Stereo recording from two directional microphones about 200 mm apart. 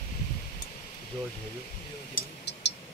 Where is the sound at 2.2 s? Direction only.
45° left (ahead or behind).